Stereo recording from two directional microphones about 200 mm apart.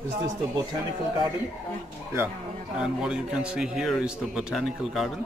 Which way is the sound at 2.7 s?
5° right (ahead or behind).